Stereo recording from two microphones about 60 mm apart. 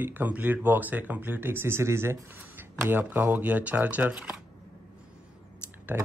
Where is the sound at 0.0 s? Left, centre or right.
Right.